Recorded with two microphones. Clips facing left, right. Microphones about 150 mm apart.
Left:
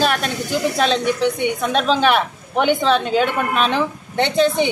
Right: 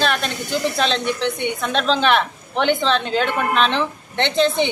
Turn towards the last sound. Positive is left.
turn(degrees=10)  # may be behind; listen again after turning